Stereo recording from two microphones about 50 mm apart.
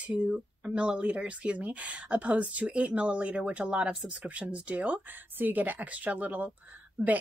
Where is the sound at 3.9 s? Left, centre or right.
Centre.